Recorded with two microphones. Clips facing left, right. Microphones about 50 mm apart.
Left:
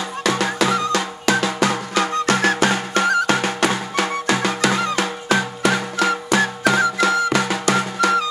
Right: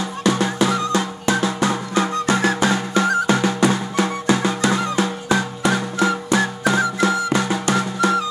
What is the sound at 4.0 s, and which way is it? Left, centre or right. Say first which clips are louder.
Music: even; left.